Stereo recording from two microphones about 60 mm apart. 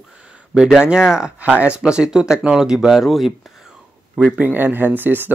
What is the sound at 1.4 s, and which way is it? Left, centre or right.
Speech, right.